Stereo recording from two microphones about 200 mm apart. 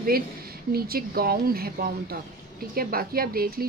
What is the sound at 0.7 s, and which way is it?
A woman's voice, 50° right (ahead or behind).